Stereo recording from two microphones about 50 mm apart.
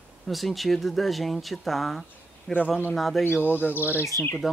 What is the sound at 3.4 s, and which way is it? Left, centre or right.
Speech, left.